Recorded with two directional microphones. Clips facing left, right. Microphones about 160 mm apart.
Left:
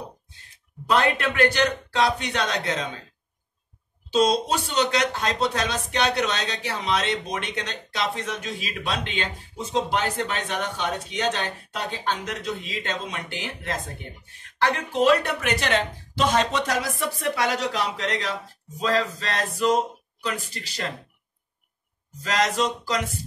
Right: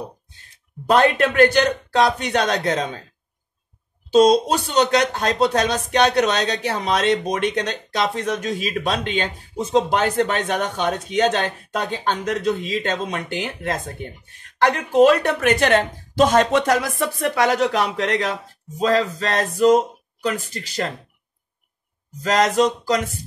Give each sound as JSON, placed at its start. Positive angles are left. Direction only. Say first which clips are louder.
{"t": 0.8, "sound": "speech", "louder": "right 6 dB", "side_deg": -45}
{"t": 4.1, "sound": "speech", "louder": "right 7 dB", "side_deg": -40}
{"t": 22.2, "sound": "speech", "louder": "right 6 dB", "side_deg": -45}